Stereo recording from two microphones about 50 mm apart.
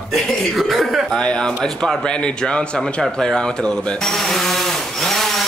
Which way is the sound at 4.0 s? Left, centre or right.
Centre.